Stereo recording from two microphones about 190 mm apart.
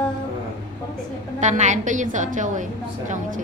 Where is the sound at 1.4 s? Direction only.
40° right (ahead or behind).